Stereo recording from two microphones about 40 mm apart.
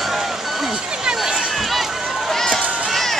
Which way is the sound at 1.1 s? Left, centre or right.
Centre.